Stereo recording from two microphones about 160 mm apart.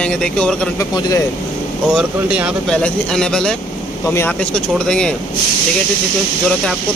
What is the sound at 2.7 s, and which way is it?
Speech, 5° left (ahead or behind).